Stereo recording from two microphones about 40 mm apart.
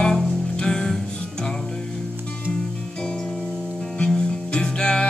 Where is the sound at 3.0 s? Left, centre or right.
Centre.